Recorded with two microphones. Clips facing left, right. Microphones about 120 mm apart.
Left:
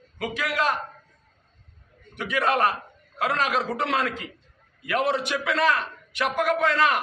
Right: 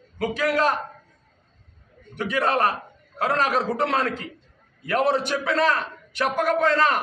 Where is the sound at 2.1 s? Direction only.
35° right (ahead or behind).